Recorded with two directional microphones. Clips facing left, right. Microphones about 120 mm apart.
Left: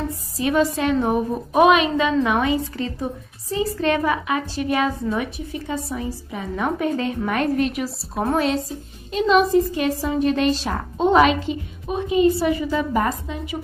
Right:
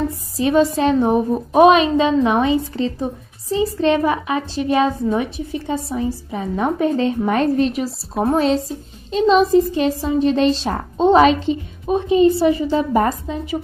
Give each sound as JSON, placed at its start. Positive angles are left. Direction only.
{"t": 0.4, "sound": "a woman's voice", "side_deg": -30}
{"t": 8.2, "sound": "a woman's voice", "side_deg": 0}
{"t": 9.1, "sound": "a woman's voice", "side_deg": -30}